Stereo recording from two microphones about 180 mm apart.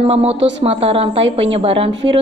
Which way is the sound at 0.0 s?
35° right (ahead or behind).